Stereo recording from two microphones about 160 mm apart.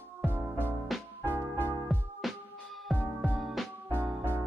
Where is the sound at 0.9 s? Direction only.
Centre (ahead or behind).